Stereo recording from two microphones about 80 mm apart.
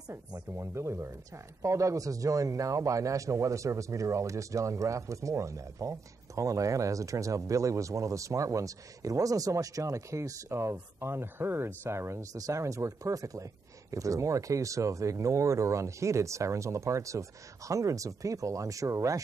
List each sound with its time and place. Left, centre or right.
0.6 s speech: right